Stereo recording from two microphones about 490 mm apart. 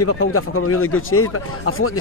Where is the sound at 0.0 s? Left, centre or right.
Left.